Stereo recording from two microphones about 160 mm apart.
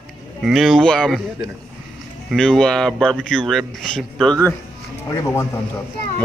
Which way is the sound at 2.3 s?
5° left (ahead or behind).